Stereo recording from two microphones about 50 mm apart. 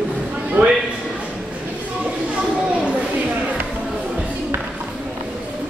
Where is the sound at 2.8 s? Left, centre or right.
Right.